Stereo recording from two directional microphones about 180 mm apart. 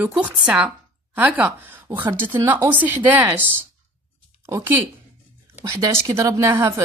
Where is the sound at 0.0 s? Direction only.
5° right (ahead or behind).